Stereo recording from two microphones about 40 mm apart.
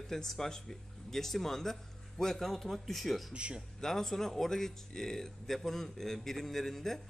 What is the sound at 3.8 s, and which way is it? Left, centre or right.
Speech, centre.